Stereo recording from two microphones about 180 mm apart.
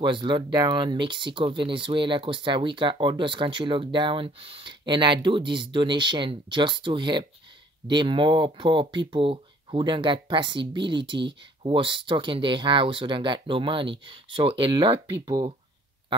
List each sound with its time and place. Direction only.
0.0 s speech: 25° right (ahead or behind)